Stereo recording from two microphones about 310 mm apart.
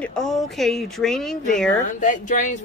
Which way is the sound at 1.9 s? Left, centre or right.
Left.